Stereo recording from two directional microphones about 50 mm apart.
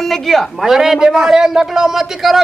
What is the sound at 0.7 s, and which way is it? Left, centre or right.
Speech, centre.